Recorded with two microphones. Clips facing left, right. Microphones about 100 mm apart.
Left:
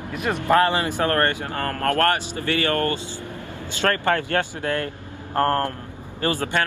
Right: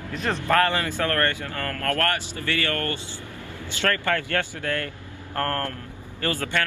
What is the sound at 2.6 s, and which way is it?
Speech, 25° left (ahead or behind).